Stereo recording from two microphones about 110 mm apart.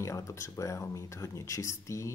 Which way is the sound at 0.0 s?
25° left (ahead or behind).